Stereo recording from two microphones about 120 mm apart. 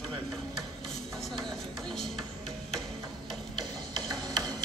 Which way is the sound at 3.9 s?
35° right (ahead or behind).